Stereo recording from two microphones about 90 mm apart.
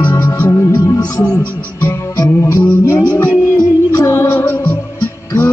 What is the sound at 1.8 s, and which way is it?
Music, 20° left (ahead or behind).